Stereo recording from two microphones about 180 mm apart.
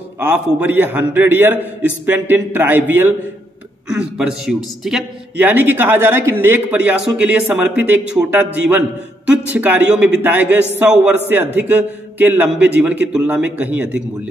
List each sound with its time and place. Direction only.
0.2 s a man's voice: 10° right (ahead or behind)